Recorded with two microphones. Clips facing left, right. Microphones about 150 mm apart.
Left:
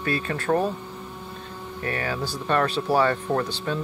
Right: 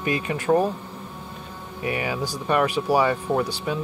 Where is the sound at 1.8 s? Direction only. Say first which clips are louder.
Right 2 dB; 15° right (ahead or behind).